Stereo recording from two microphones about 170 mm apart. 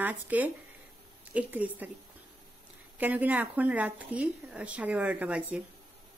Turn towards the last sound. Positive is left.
turn(degrees=-5)  # may be behind; listen again after turning